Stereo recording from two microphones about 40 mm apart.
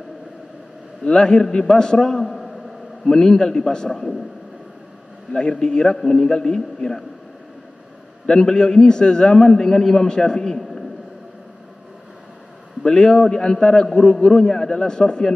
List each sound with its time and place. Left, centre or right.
1.0 s a man's voice: centre
3.1 s a man's voice: centre
5.3 s a man's voice: left
8.3 s a man's voice: centre
12.8 s a man's voice: centre